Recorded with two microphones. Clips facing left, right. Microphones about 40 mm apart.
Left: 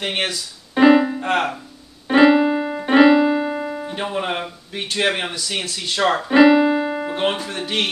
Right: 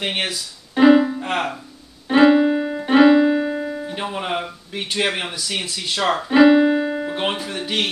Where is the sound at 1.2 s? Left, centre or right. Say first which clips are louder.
Left 3 dB; centre.